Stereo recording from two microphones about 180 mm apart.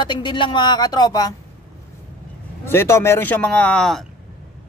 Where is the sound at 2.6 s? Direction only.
15° left (ahead or behind).